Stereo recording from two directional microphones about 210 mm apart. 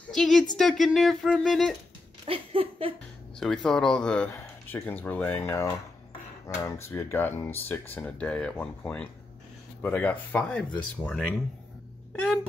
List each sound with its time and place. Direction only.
0.1 s speech: centre (ahead or behind)
2.2 s a sound: 25° right (ahead or behind)
3.3 s speech: centre (ahead or behind)